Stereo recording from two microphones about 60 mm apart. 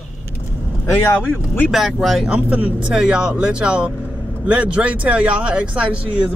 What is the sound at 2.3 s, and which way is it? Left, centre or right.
Speech, right.